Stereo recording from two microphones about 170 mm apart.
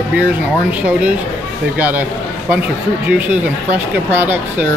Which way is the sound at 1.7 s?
10° right (ahead or behind).